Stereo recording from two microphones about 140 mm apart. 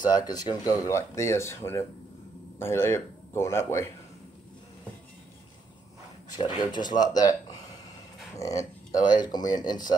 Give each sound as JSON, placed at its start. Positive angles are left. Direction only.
{"t": 0.1, "sound": "speech", "side_deg": 30}
{"t": 6.3, "sound": "speech", "side_deg": 30}
{"t": 8.3, "sound": "speech", "side_deg": 25}